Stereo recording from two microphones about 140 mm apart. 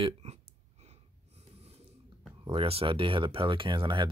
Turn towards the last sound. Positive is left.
turn(degrees=-35)  # may be behind; listen again after turning